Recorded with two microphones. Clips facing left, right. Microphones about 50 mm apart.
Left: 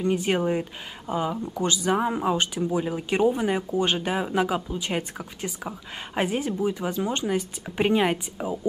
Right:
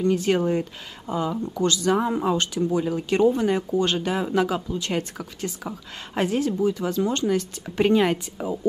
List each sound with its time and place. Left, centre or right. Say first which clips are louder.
0.0 s speech: right 2 dB; centre